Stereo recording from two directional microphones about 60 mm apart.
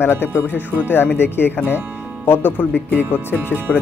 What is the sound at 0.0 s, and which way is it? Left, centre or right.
Speech, left.